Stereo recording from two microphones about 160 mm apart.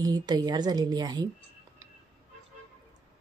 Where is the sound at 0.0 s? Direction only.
25° right (ahead or behind).